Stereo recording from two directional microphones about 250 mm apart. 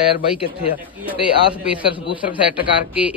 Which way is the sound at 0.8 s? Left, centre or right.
Centre.